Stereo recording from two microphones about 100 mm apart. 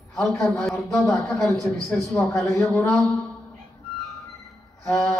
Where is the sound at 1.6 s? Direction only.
5° left (ahead or behind).